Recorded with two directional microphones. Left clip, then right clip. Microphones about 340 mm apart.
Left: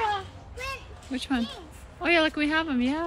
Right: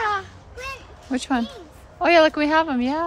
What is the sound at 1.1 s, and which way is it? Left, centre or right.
A child's voice, centre.